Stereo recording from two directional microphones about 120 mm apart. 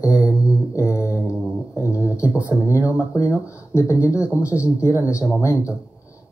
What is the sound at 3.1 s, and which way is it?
Speech, 25° left (ahead or behind).